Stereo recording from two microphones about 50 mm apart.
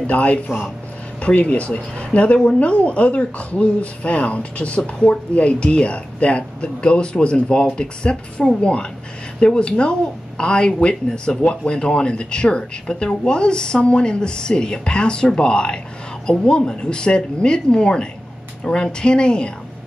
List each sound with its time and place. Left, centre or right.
0.0 s speech: left